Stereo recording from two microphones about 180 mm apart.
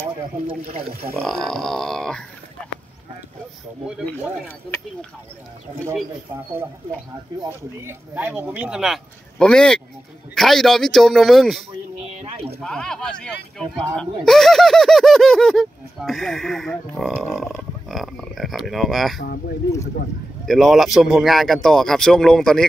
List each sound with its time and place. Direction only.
0.0 s speech: 35° right (ahead or behind)
1.2 s speech: 5° left (ahead or behind)
7.4 s speech: 10° right (ahead or behind)
12.6 s speech: 5° left (ahead or behind)
20.4 s speech: centre (ahead or behind)